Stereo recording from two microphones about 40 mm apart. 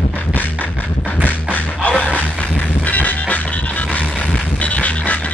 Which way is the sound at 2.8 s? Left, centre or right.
Left.